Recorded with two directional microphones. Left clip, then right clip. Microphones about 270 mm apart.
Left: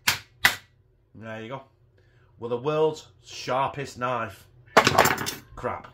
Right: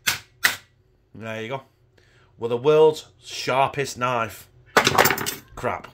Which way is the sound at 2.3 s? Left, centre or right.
Right.